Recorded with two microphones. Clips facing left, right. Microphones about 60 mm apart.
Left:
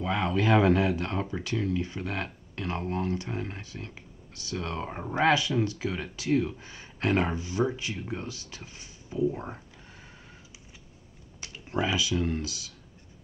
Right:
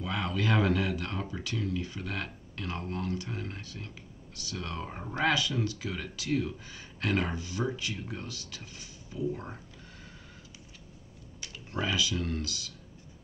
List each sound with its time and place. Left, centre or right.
0.0 s speech: left
11.4 s speech: left